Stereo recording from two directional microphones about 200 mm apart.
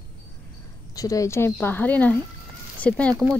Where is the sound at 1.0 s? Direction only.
15° left (ahead or behind).